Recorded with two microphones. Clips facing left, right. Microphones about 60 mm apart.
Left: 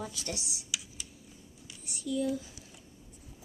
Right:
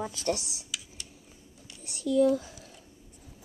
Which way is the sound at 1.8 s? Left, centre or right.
Right.